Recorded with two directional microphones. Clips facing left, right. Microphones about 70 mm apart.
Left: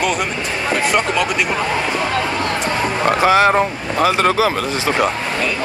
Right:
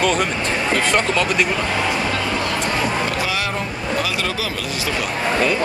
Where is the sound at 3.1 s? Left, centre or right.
Left.